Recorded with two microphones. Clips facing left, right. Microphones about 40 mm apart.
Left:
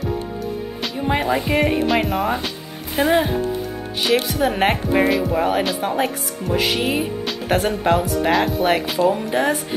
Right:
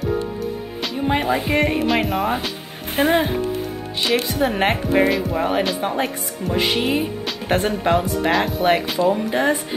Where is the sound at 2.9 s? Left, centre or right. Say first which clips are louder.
Even; right.